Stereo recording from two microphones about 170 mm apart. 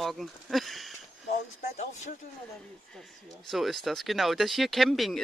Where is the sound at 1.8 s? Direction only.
45° left (ahead or behind).